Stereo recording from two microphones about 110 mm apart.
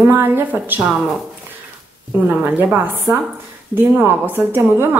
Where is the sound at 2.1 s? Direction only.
15° right (ahead or behind).